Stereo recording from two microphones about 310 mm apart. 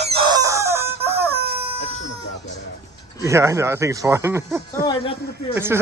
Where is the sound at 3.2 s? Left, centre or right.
Centre.